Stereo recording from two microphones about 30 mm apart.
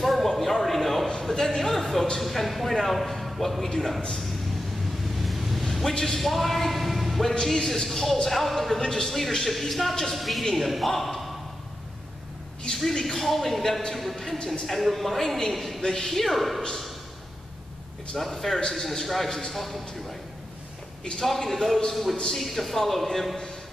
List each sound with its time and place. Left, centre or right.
0.0 s a sound: centre
1.3 s a sound: centre
2.1 s a man's voice: centre
3.5 s a man's voice: centre
5.2 s vehicle: centre
5.8 s speech: centre
7.4 s a man's voice: centre
9.5 s a man's voice: centre
13.0 s a man's voice: centre
15.8 s a man's voice: centre
18.1 s a man's voice: centre
21.3 s a man's voice: centre